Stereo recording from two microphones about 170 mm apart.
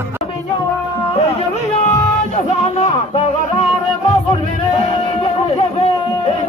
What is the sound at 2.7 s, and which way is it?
Music, 40° left (ahead or behind).